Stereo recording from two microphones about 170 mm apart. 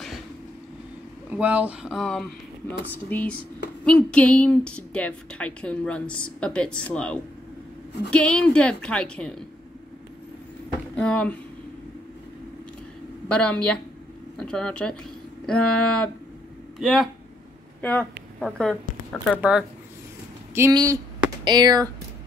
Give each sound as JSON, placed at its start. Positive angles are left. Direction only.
{"t": 1.3, "sound": "a woman's voice", "side_deg": -10}
{"t": 11.0, "sound": "a woman's voice", "side_deg": 5}
{"t": 13.3, "sound": "a woman's voice", "side_deg": 5}
{"t": 19.3, "sound": "speech", "side_deg": -10}